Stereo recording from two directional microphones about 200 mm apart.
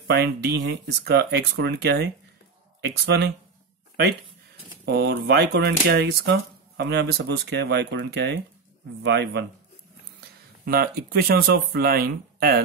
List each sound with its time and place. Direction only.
0.2 s speech: 60° right (ahead or behind)
4.8 s speech: 55° right (ahead or behind)
10.6 s speech: 50° right (ahead or behind)